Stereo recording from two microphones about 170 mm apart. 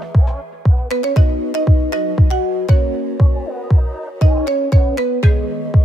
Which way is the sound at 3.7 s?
Centre (ahead or behind).